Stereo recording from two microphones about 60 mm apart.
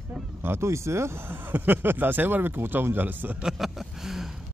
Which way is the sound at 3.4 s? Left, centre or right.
Centre.